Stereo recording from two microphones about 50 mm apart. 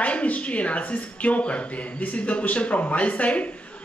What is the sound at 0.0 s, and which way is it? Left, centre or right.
Speech, left.